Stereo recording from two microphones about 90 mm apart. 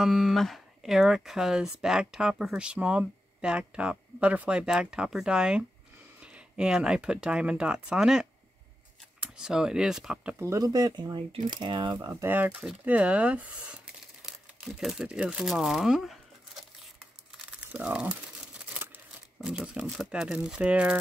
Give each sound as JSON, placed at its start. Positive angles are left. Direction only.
{"t": 0.0, "sound": "speech", "side_deg": -5}
{"t": 9.4, "sound": "speech", "side_deg": -10}
{"t": 10.4, "sound": "speech", "side_deg": -40}
{"t": 12.1, "sound": "speech", "side_deg": -25}
{"t": 14.2, "sound": "crumpling", "side_deg": -5}
{"t": 17.6, "sound": "speech", "side_deg": -15}
{"t": 19.4, "sound": "speech", "side_deg": -10}